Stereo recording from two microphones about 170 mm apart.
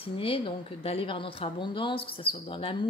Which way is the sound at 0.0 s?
35° left (ahead or behind).